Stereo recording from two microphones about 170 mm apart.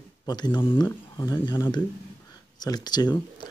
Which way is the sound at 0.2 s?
25° left (ahead or behind).